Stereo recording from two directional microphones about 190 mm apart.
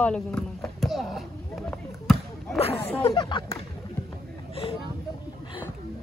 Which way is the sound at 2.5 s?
30° left (ahead or behind).